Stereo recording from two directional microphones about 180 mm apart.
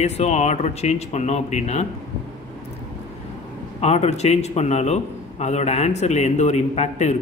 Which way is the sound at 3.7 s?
35° left (ahead or behind).